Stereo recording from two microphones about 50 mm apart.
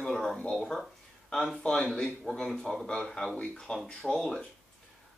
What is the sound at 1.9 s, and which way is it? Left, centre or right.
Speech, centre.